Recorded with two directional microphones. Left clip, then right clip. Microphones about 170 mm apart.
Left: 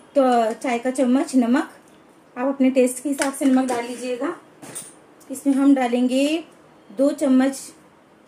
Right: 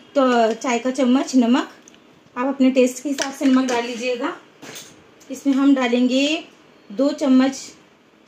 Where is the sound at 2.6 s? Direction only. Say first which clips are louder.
Right 2 dB; 40° right (ahead or behind).